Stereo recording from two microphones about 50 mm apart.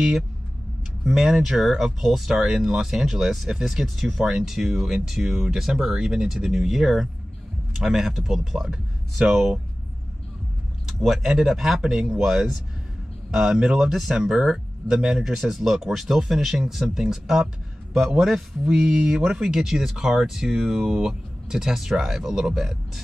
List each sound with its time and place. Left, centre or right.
1.0 s a man's voice: centre
11.0 s a man's voice: centre